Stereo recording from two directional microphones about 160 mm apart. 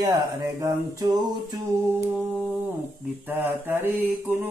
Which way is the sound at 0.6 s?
20° right (ahead or behind).